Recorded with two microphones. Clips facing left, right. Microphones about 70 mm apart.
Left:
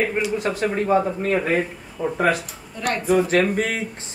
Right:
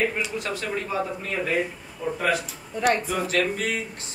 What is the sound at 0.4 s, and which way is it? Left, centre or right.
A man's voice, left.